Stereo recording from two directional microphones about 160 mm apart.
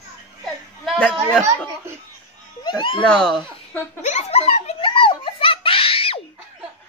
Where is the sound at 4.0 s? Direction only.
45° left (ahead or behind).